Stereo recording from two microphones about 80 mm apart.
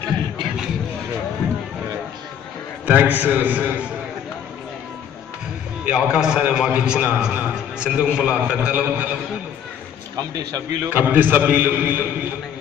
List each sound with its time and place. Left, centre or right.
2.9 s a man's voice: right
5.9 s a man's voice: centre
10.3 s speech: right
10.9 s a man's voice: right